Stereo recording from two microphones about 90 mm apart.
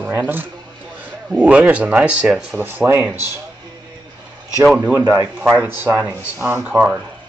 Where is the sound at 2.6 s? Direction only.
20° right (ahead or behind).